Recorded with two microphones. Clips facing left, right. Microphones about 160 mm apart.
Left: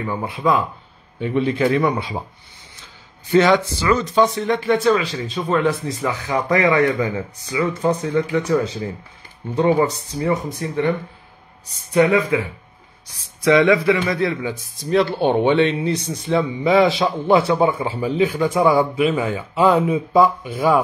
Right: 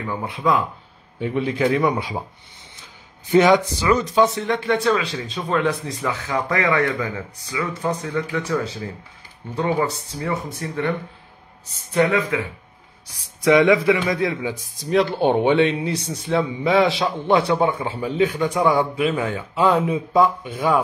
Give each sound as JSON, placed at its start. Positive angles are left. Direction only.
{"t": 0.0, "sound": "a man's voice", "side_deg": 5}
{"t": 1.2, "sound": "speech", "side_deg": -5}
{"t": 3.3, "sound": "a man's voice", "side_deg": -15}
{"t": 6.3, "sound": "speech", "side_deg": 15}
{"t": 11.9, "sound": "speech", "side_deg": 10}
{"t": 13.0, "sound": "a man's voice", "side_deg": -15}